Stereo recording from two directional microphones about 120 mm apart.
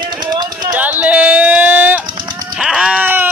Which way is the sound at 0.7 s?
15° right (ahead or behind).